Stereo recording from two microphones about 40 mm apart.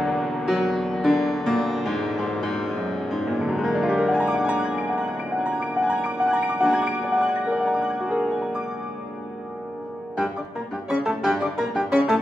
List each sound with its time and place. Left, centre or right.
0.0 s music: centre
3.8 s music: centre
4.1 s music: right
11.2 s music: centre